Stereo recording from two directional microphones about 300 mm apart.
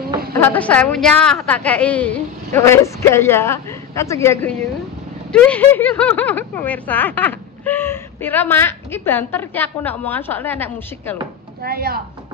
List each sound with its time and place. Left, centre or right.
0.4 s speech: centre
11.6 s a woman's voice: right